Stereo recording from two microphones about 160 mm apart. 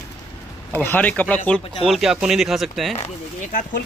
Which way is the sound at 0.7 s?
10° left (ahead or behind).